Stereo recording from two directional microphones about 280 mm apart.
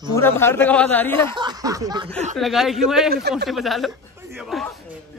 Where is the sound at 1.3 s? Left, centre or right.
Centre.